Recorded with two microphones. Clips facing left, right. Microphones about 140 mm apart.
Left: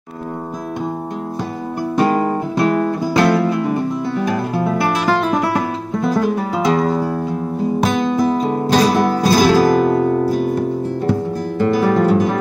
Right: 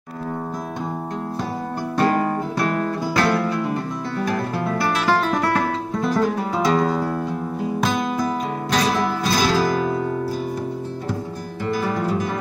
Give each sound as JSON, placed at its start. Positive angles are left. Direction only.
{"t": 2.0, "sound": "music", "side_deg": 20}
{"t": 7.8, "sound": "music", "side_deg": 30}
{"t": 9.0, "sound": "guitar", "side_deg": 45}
{"t": 11.6, "sound": "music", "side_deg": 65}